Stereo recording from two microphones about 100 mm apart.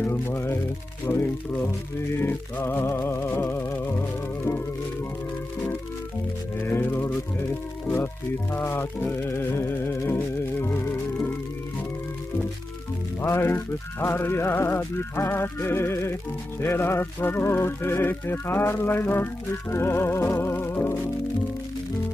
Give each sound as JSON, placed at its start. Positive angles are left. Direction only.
{"t": 0.0, "sound": "music", "side_deg": 25}
{"t": 6.6, "sound": "music", "side_deg": 25}
{"t": 7.8, "sound": "speech", "side_deg": 20}
{"t": 8.5, "sound": "music", "side_deg": 20}
{"t": 13.2, "sound": "music", "side_deg": 25}